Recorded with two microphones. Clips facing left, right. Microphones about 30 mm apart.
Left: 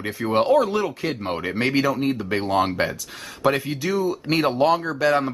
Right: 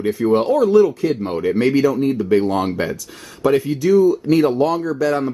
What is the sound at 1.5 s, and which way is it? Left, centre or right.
Speech, centre.